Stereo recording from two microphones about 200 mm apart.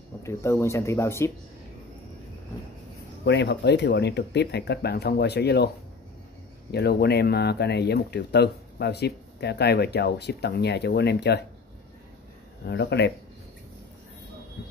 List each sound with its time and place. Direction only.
0.2 s speech: 15° left (ahead or behind)
3.3 s speech: 60° left (ahead or behind)
6.7 s speech: 55° left (ahead or behind)
12.6 s speech: 60° left (ahead or behind)